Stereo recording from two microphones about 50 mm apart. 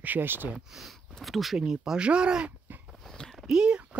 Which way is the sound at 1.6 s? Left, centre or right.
Centre.